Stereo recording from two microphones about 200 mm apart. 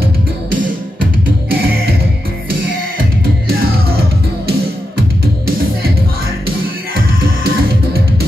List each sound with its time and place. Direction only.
7.2 s music: 50° right (ahead or behind)